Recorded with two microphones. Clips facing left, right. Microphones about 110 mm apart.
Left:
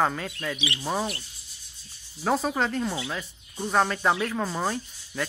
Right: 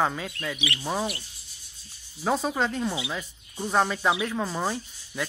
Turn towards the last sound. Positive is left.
turn(degrees=-5)  # may be behind; listen again after turning